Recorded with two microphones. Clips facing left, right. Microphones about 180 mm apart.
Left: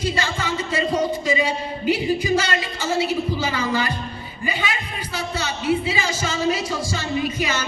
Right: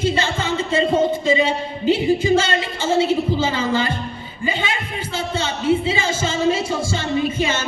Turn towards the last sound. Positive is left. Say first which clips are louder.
# right 3 dB
turn(degrees=-25)  # may be behind; listen again after turning